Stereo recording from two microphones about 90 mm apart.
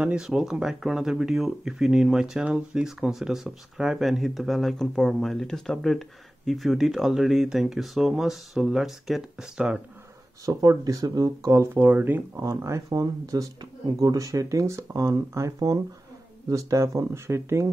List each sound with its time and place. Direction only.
0.0 s speech: 10° right (ahead or behind)
10.4 s speech: 40° right (ahead or behind)